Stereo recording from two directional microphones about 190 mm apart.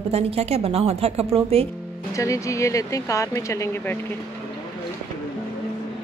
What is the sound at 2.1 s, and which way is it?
Speech, 15° left (ahead or behind).